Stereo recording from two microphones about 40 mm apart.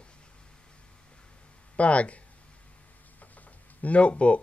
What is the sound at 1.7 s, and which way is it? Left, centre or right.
Speech, left.